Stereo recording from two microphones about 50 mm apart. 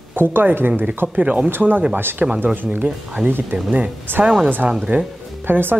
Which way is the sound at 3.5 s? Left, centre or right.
Right.